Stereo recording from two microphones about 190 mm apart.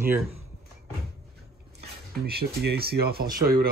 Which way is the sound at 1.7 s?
55° right (ahead or behind).